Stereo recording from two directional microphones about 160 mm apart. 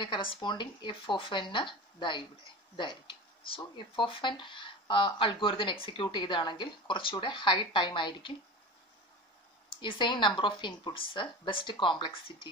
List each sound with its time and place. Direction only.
0.0 s speech: 30° left (ahead or behind)
9.8 s speech: 30° left (ahead or behind)